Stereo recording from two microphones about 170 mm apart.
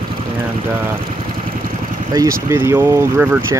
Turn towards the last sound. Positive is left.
turn(degrees=-15)  # may be behind; listen again after turning